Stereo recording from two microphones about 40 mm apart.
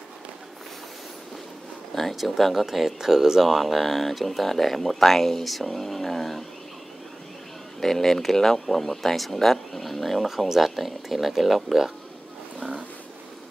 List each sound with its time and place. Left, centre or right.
2.1 s speech: centre
7.8 s speech: centre
12.5 s a sound: right